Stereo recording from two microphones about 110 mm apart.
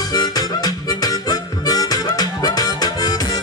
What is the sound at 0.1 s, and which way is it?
Harmonica, 35° left (ahead or behind).